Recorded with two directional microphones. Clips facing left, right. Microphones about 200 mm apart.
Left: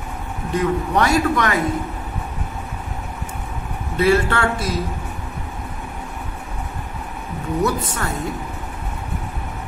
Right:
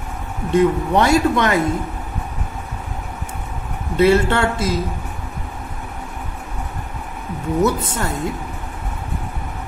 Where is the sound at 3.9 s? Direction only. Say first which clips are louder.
Right 3 dB; 25° right (ahead or behind).